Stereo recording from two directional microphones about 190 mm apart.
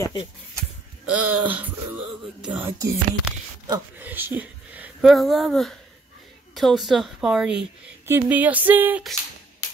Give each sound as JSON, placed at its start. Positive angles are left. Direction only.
{"t": 0.0, "sound": "speech", "side_deg": 25}
{"t": 1.0, "sound": "a woman's voice", "side_deg": -10}